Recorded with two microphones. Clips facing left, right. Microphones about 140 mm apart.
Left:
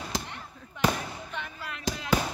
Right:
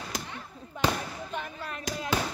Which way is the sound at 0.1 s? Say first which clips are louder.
Left 4 dB; 30° left (ahead or behind).